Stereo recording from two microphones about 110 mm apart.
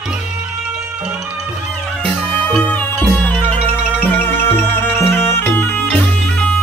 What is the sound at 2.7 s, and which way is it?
Music, 15° left (ahead or behind).